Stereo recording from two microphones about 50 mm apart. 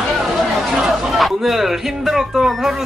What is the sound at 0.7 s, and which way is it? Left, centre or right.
Chatter, centre.